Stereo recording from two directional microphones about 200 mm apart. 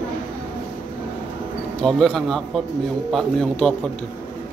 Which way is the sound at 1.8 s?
Centre (ahead or behind).